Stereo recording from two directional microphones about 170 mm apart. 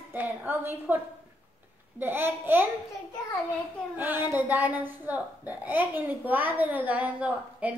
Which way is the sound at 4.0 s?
10° right (ahead or behind).